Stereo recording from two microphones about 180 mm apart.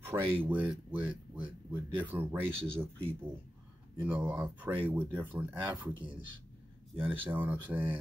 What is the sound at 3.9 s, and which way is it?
Speech, 10° right (ahead or behind).